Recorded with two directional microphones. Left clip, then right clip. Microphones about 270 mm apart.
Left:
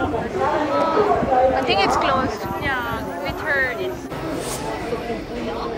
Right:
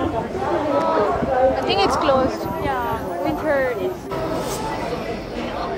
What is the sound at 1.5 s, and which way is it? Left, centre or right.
Speech, centre.